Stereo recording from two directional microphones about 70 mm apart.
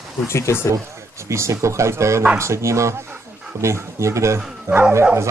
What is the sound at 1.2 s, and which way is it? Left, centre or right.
Speech, right.